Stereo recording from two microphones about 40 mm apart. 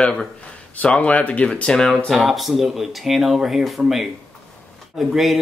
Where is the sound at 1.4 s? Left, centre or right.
Left.